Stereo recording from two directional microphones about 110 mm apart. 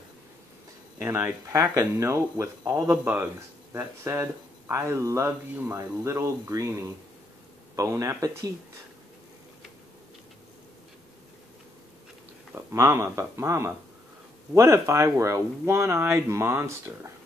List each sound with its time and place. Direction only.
1.0 s speech: 20° right (ahead or behind)
7.7 s speech: 30° right (ahead or behind)
12.5 s speech: 25° right (ahead or behind)